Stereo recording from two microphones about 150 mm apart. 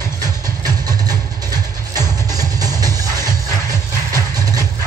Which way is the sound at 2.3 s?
25° right (ahead or behind).